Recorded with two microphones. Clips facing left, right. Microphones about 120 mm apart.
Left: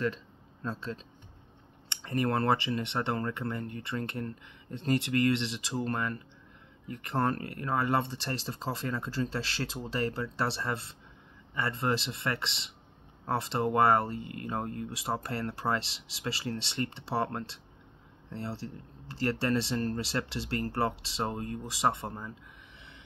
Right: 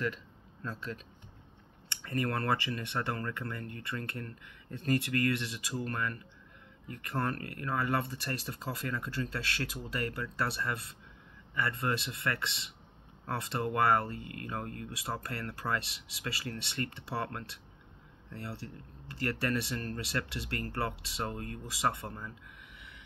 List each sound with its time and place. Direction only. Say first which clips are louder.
0.0 s speech: left 3 dB; 25° left (ahead or behind)